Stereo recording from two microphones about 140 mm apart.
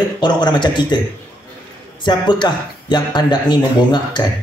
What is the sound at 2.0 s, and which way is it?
Speech, 30° left (ahead or behind).